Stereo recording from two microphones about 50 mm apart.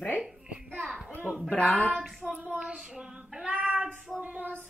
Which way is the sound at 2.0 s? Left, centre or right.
Centre.